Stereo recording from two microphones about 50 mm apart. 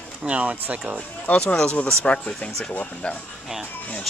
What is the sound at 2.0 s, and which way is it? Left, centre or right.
Speech, left.